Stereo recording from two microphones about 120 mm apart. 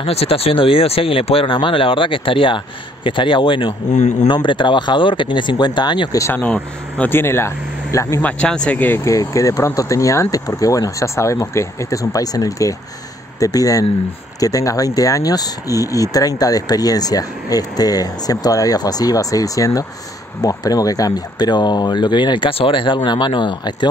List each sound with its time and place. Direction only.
0.0 s speech: 55° left (ahead or behind)
3.9 s speech: 80° left
4.3 s speech: 45° left (ahead or behind)
6.3 s speech: 15° left (ahead or behind)
8.2 s speech: 10° left (ahead or behind); by 23.9 s 40° left (ahead or behind)